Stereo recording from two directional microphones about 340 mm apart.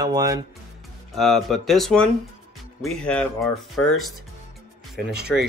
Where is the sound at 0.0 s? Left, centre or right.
Centre.